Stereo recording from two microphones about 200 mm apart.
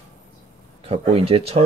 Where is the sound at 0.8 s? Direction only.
30° right (ahead or behind).